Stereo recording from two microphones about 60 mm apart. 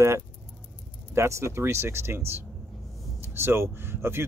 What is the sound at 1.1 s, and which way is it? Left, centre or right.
Speech, right.